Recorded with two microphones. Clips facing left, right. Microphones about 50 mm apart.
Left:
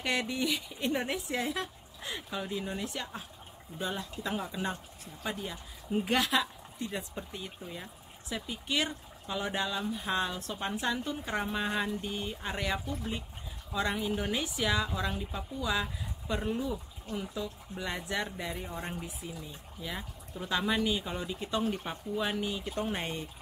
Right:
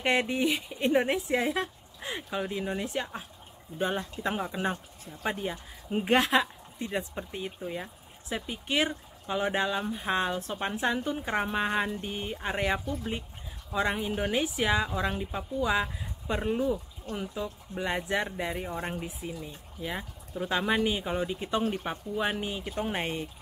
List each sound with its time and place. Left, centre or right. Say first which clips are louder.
0.0 s speech: right 5 dB; right
3.7 s speech: right 5 dB; right